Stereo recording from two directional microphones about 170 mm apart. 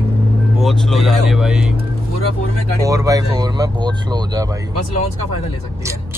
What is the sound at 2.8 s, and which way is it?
Speech, 20° right (ahead or behind).